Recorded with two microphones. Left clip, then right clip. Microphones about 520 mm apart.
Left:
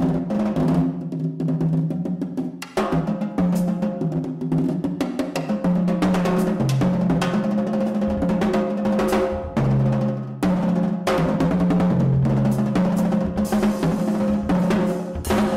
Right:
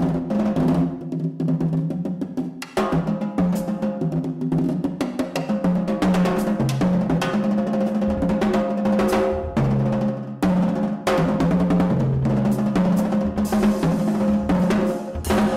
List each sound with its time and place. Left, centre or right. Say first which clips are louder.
0.3 s music: right 1 dB; left
5.9 s music: even; right
8.0 s music: even; left
10.4 s music: even; right
11.6 s music: even; right
12.4 s music: right 1 dB; left
14.0 s music: even; centre
14.5 s music: even; right
15.2 s music: right 1 dB; right